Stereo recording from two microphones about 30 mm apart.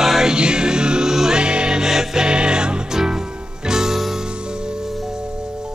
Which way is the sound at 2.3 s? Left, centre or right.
Right.